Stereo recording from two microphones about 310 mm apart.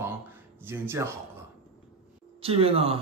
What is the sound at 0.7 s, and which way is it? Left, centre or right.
Speech, centre.